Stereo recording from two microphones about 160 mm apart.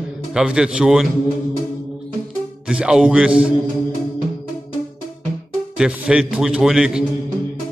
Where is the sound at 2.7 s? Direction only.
5° right (ahead or behind).